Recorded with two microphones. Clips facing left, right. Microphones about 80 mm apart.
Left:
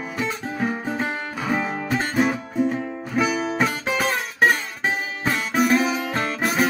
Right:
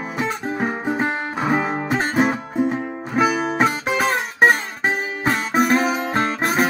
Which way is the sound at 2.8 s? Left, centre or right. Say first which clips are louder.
Right 2 dB; centre.